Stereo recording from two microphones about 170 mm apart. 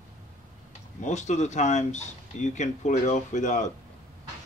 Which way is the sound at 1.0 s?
45° left (ahead or behind).